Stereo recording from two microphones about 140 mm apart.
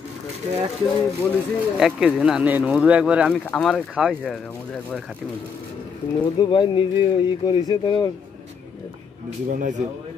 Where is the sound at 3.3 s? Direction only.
5° left (ahead or behind).